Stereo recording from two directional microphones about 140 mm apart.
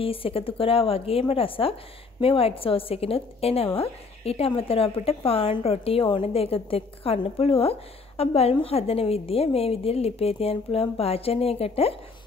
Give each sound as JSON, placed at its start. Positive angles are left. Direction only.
{"t": 0.0, "sound": "speech", "side_deg": 40}